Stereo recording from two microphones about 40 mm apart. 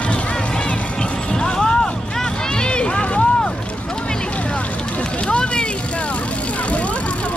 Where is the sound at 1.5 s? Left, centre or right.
Centre.